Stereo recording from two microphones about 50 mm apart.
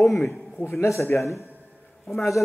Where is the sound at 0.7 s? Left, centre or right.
Left.